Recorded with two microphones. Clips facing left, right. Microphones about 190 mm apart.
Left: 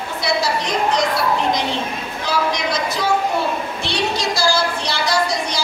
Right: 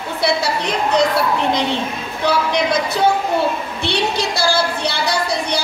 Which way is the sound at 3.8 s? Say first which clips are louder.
Right 3 dB; 60° right (ahead or behind).